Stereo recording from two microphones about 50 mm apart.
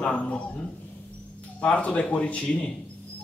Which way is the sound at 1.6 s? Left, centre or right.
Left.